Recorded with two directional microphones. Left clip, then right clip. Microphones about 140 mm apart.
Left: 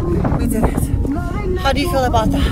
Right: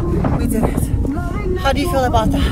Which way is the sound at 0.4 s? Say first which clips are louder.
Even; 10° left (ahead or behind).